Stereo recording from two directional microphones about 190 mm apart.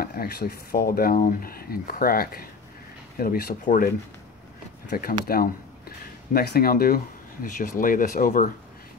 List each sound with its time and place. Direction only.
0.0 s speech: 50° left (ahead or behind)